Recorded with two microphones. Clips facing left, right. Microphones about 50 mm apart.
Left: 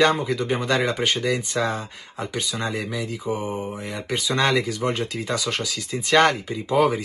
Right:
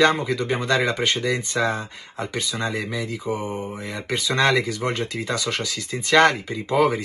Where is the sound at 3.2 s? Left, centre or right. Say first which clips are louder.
Even; left.